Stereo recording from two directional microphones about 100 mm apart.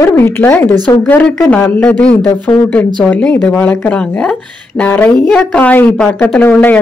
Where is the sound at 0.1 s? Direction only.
20° left (ahead or behind).